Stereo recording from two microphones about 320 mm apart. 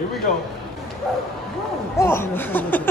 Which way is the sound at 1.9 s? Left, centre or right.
Centre.